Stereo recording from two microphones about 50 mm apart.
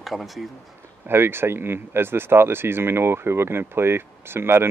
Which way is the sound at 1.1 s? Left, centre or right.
Right.